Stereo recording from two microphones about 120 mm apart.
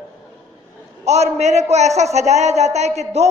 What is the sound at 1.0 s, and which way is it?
A man's voice, 65° right (ahead or behind).